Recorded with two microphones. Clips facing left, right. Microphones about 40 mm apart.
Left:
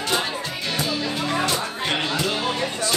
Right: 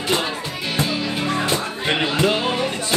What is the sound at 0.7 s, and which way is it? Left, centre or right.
Music, centre.